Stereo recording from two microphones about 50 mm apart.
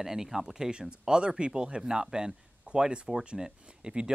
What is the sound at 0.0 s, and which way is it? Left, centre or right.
Speech, centre.